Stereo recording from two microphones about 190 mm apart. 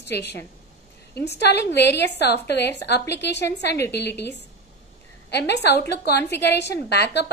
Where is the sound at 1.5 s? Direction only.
60° left (ahead or behind).